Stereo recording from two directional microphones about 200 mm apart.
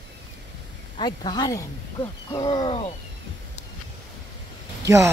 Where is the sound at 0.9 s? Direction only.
20° left (ahead or behind).